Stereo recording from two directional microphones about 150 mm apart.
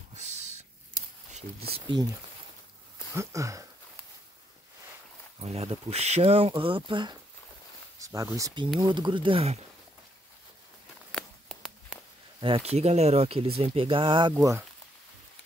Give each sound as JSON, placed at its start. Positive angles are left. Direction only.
{"t": 1.7, "sound": "speech", "side_deg": -30}
{"t": 3.2, "sound": "speech", "side_deg": -20}
{"t": 5.4, "sound": "speech", "side_deg": -45}
{"t": 8.0, "sound": "speech", "side_deg": -20}
{"t": 11.1, "sound": "a sound", "side_deg": 5}
{"t": 12.4, "sound": "speech", "side_deg": -35}
{"t": 14.3, "sound": "speech", "side_deg": -20}